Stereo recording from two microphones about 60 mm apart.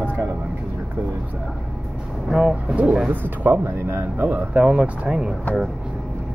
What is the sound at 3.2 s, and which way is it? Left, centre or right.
Speech, right.